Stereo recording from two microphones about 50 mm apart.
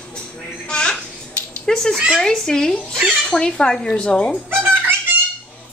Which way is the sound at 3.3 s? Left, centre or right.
Centre.